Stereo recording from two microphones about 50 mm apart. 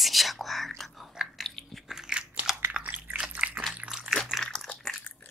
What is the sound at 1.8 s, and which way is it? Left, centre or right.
Biting, centre.